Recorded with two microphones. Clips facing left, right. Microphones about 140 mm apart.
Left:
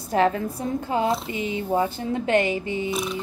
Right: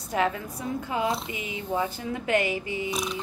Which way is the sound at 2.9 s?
Centre (ahead or behind).